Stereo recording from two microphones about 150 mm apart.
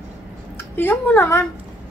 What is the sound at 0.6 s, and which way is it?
Speech, 15° left (ahead or behind).